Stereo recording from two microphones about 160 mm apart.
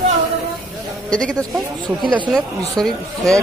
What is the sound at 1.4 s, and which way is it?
Speech, 30° right (ahead or behind).